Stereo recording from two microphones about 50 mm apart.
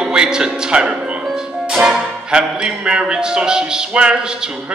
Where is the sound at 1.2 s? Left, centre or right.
Centre.